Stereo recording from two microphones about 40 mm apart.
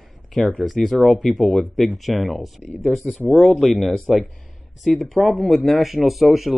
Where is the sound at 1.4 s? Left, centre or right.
Left.